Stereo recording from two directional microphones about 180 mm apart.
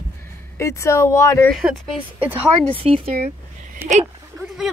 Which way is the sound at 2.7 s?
30° right (ahead or behind).